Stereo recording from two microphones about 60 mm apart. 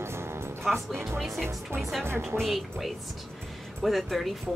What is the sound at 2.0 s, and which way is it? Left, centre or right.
Speech, right.